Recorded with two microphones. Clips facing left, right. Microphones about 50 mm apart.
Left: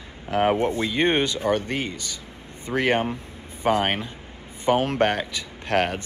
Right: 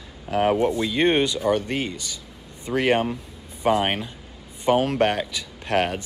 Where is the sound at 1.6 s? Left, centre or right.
Centre.